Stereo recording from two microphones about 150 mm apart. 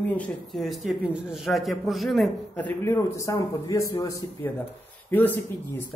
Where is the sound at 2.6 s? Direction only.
15° left (ahead or behind).